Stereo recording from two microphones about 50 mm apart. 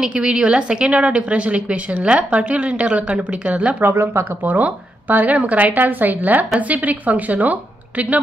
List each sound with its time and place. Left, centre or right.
0.0 s a woman's voice: right
3.8 s speech: right
4.4 s speech: right